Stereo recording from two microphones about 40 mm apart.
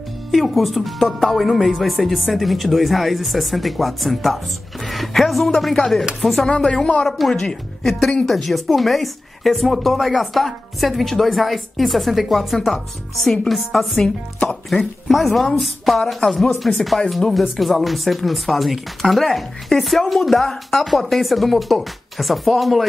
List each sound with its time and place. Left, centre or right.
0.3 s speech: centre
6.7 s speech: left
7.1 s speech: centre
8.0 s speech: left
8.3 s speech: centre
13.7 s speech: left
15.0 s speech: centre